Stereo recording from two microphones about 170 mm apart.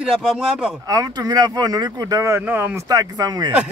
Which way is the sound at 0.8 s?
20° right (ahead or behind).